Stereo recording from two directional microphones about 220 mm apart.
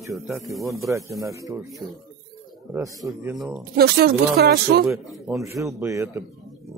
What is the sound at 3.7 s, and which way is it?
Speech, 45° right (ahead or behind).